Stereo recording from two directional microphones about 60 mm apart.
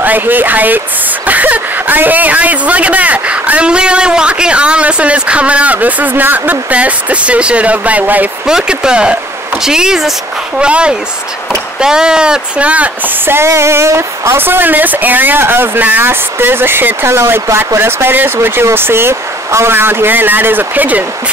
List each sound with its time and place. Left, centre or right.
0.0 s speech: right
8.5 s speech: centre; by 13.5 s right
13.5 s speech: right